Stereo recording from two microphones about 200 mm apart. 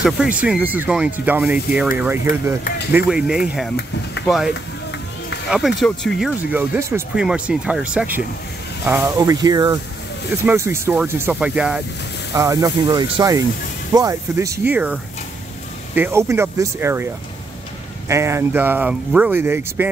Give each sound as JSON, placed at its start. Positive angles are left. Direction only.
{"t": 0.0, "sound": "speech", "side_deg": -5}
{"t": 5.5, "sound": "speech", "side_deg": 0}
{"t": 12.4, "sound": "speech", "side_deg": -15}